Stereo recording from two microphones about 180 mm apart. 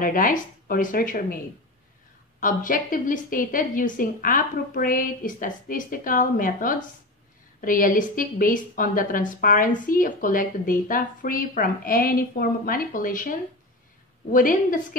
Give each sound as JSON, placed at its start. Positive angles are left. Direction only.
{"t": 0.0, "sound": "a woman's voice", "side_deg": 50}
{"t": 2.4, "sound": "a woman's voice", "side_deg": 50}